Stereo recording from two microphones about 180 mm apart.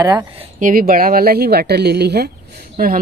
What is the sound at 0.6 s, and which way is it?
Speech, 50° right (ahead or behind).